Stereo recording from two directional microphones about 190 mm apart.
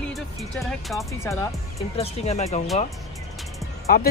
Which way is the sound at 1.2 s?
15° left (ahead or behind).